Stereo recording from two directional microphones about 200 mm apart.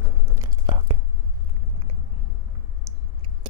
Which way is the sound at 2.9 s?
15° right (ahead or behind).